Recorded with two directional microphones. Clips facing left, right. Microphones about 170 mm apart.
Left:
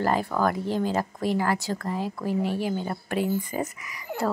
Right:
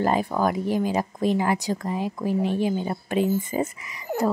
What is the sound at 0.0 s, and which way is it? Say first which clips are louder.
Speech: right 2 dB; 15° right (ahead or behind).